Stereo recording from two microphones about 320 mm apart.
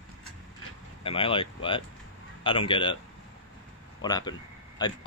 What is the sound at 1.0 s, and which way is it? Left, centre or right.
A man's voice, centre.